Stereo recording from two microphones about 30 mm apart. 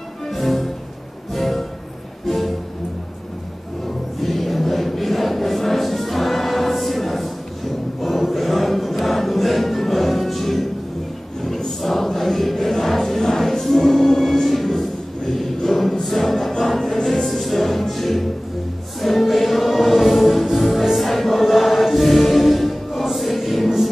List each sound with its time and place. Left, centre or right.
0.3 s music: centre
3.8 s music: centre
11.4 s choir: centre
20.0 s music: centre